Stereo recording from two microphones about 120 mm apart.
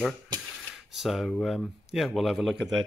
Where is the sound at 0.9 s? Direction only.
Centre (ahead or behind).